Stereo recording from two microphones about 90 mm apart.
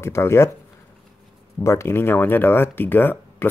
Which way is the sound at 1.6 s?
30° left (ahead or behind).